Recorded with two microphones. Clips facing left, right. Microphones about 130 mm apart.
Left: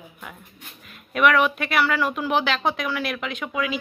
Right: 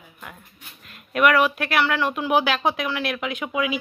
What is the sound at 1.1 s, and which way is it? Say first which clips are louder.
Speech: right 1 dB; 5° right (ahead or behind).